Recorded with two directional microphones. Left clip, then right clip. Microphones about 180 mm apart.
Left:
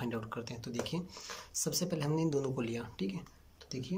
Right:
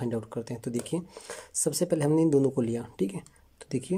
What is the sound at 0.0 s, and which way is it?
Speech, 35° right (ahead or behind).